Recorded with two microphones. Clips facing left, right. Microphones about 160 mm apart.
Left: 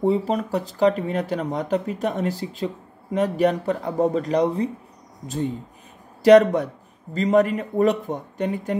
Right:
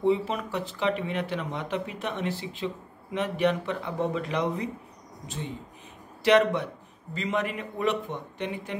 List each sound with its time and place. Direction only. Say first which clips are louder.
0.0 s speech: left 4 dB; 40° left (ahead or behind)
6.2 s speech: left 8 dB; 40° left (ahead or behind)